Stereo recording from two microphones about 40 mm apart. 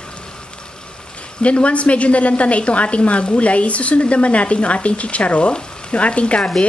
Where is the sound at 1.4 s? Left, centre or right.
Left.